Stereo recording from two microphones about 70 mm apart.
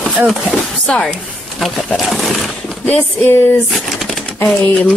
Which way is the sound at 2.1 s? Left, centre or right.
Centre.